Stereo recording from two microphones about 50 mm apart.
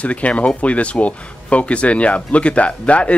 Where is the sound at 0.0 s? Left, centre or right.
Left.